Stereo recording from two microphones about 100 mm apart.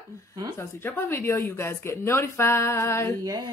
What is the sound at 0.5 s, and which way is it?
Speech, 25° left (ahead or behind).